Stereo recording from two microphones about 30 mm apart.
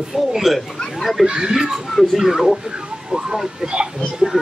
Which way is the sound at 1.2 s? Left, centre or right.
Right.